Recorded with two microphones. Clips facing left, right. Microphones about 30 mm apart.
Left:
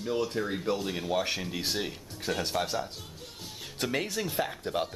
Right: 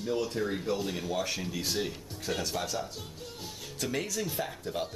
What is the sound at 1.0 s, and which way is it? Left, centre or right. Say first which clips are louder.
Speech: left 3 dB; left.